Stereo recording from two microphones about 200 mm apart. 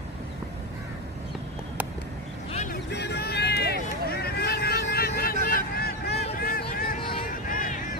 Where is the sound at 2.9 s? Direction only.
55° left (ahead or behind).